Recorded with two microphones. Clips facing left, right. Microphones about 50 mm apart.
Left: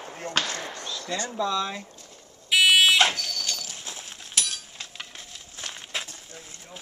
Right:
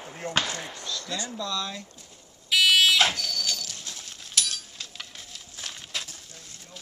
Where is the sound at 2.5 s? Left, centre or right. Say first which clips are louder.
Left 2 dB; centre.